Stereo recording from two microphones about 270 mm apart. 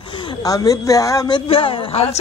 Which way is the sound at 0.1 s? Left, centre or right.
Centre.